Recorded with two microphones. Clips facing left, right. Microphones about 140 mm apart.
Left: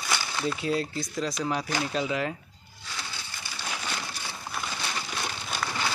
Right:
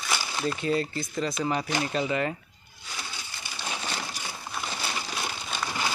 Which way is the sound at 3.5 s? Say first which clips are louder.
Right 1 dB; 25° right (ahead or behind).